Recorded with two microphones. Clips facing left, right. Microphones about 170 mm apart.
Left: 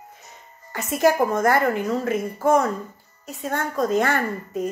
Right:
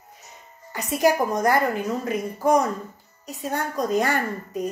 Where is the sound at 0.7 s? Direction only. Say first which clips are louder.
Left 1 dB; 15° right (ahead or behind).